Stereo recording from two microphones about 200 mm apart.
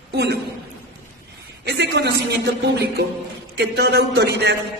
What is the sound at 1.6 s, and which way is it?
Speech, 55° right (ahead or behind).